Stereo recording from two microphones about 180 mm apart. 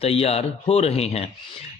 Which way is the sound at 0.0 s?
35° left (ahead or behind).